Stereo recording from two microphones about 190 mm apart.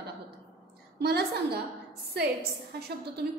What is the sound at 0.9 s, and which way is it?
Speech, 60° right (ahead or behind).